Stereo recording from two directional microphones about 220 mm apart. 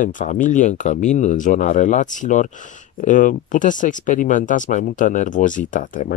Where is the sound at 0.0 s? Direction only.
35° left (ahead or behind).